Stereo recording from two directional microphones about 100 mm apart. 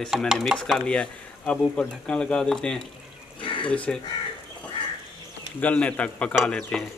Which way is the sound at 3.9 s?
10° left (ahead or behind).